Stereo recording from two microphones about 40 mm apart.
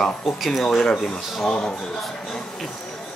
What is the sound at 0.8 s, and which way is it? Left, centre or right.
Speech, centre.